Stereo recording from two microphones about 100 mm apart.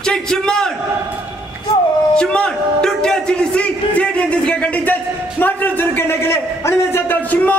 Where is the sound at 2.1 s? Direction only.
10° left (ahead or behind).